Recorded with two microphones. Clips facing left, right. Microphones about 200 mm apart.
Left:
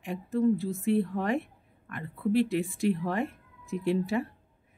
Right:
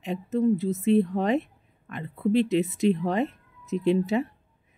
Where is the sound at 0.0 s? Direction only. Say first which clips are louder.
Right 2 dB; 20° right (ahead or behind).